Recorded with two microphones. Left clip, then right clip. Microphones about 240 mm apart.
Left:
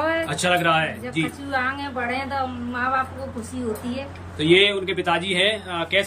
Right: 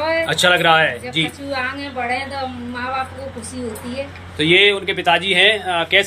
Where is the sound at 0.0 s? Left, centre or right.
Left.